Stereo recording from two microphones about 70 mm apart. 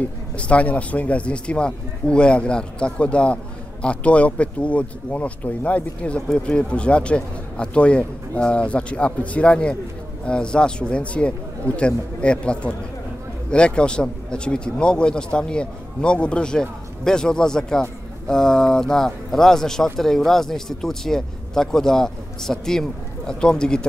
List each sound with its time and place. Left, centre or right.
0.4 s speech: centre